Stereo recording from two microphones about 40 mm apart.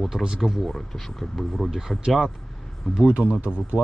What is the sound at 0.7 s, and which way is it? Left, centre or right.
Speech, centre.